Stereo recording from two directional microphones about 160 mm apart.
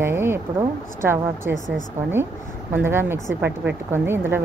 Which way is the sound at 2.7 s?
15° right (ahead or behind).